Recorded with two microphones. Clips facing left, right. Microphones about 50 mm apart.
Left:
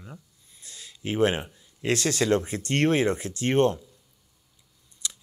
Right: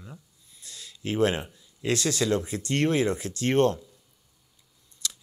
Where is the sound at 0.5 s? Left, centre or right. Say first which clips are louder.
Right 1 dB; left.